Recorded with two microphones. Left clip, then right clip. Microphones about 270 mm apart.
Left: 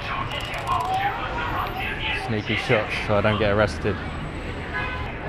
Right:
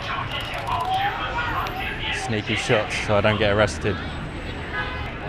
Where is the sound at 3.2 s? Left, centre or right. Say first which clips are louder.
Right 1 dB; centre.